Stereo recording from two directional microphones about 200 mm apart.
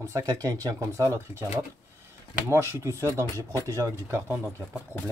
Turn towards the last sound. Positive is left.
turn(degrees=-10)  # may be behind; listen again after turning